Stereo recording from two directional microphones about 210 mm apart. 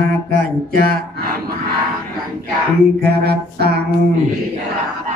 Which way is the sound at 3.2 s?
50° right (ahead or behind).